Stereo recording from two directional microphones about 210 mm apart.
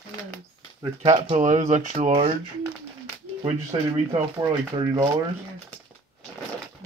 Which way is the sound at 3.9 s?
25° right (ahead or behind).